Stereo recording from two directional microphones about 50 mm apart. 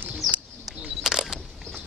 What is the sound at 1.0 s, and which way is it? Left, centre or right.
Single-lens reflex camera, centre.